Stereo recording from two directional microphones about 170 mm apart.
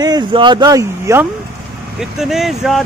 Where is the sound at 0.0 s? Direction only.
25° right (ahead or behind).